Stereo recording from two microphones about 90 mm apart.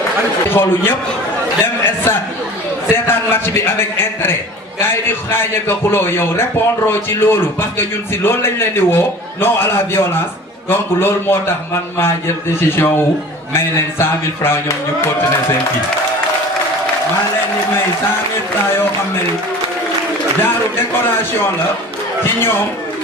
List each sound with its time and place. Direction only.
0.5 s a man's voice: 25° left (ahead or behind)
12.5 s a man's voice: 25° left (ahead or behind)
20.4 s a man's voice: 25° left (ahead or behind)